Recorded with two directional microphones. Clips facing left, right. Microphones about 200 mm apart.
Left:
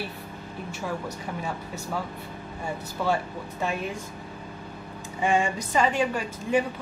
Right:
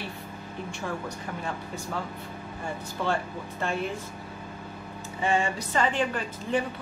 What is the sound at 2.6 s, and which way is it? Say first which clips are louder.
Speech: left 2 dB; 10° left (ahead or behind).